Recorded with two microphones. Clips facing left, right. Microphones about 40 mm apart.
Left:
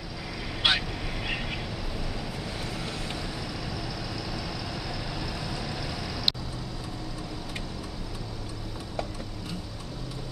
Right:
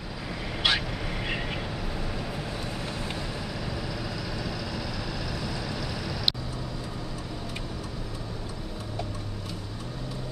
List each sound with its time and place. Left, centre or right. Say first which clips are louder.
0.6 s vehicle: left 1 dB; centre
1.2 s vehicle: even; centre